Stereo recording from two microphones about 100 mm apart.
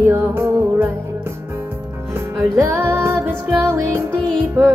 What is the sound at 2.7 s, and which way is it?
Music, 25° right (ahead or behind).